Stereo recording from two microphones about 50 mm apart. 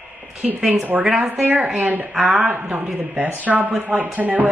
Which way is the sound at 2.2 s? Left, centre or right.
Centre.